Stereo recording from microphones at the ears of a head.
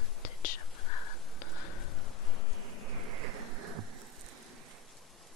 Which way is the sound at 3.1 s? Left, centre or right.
Right.